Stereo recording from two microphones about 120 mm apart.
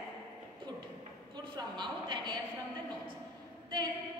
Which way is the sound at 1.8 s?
40° right (ahead or behind).